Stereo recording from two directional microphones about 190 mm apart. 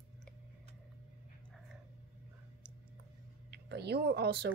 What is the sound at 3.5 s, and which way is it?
Speech, 60° right (ahead or behind).